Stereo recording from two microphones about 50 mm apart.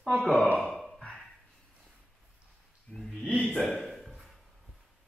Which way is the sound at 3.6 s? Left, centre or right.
Left.